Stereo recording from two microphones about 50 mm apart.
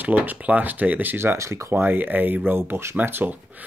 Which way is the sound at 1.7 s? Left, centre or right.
Right.